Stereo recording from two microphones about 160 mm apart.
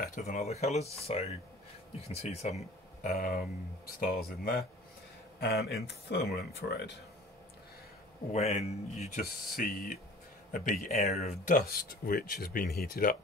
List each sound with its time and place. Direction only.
0.0 s speech: 60° left (ahead or behind)
0.4 s speech: 45° left (ahead or behind)
3.1 s speech: 65° left (ahead or behind)
5.4 s speech: 90° left
8.3 s speech: 45° left (ahead or behind)
9.2 s speech: 65° left (ahead or behind)
10.5 s speech: 55° left (ahead or behind)
11.1 s speech: 50° left (ahead or behind); by 13.1 s 65° left (ahead or behind)